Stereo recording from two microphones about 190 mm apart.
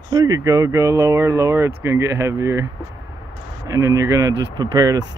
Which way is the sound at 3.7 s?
20° right (ahead or behind).